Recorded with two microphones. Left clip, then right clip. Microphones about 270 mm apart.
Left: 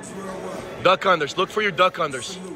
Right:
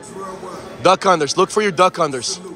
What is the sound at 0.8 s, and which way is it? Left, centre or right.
Speech, centre.